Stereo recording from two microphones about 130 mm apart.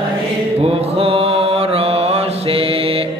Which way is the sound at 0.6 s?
45° right (ahead or behind).